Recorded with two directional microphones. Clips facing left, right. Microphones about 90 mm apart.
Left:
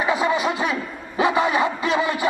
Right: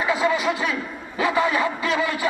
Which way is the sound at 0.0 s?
25° left (ahead or behind).